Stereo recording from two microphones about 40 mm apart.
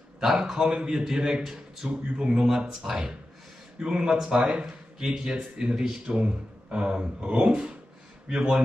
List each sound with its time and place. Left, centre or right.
0.2 s speech: centre
1.4 s speech: centre
1.9 s speech: right